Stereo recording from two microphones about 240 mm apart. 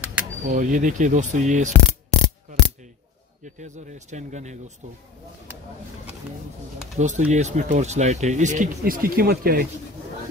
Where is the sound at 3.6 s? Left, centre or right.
Right.